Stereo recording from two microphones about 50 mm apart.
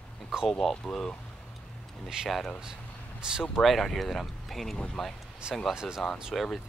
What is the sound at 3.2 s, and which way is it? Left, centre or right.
Speech, centre.